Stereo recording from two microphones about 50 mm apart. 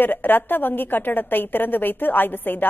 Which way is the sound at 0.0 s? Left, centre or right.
Left.